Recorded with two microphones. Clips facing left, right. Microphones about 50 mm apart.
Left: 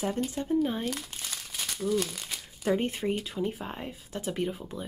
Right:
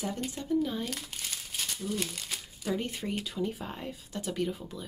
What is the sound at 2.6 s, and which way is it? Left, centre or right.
Speech, left.